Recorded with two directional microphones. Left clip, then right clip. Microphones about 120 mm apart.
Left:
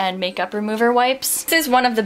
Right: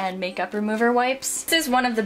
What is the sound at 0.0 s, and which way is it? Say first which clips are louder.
Speech: left 5 dB; 25° left (ahead or behind).